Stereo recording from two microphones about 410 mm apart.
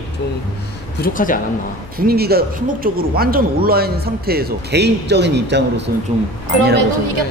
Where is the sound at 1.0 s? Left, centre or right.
Centre.